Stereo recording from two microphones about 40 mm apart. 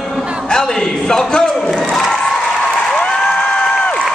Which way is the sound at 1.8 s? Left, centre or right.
Centre.